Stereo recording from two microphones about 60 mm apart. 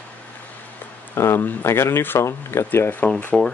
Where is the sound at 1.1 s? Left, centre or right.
Left.